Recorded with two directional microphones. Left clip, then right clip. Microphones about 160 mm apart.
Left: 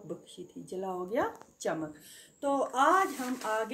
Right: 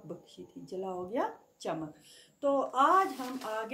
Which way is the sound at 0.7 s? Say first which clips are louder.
Left 2 dB; 40° right (ahead or behind).